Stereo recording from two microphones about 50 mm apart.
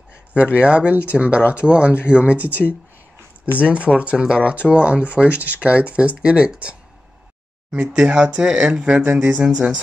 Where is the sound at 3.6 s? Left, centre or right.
Right.